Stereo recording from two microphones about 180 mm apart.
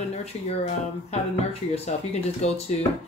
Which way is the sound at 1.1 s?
35° left (ahead or behind).